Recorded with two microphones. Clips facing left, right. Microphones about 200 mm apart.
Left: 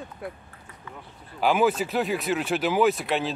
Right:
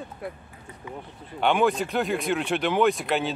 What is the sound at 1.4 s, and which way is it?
Speech, 5° left (ahead or behind).